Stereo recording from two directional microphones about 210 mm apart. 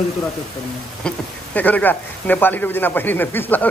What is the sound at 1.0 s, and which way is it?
Speech, 5° left (ahead or behind).